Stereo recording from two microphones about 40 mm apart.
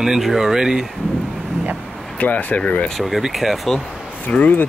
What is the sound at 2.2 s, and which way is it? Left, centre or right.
Speech, left.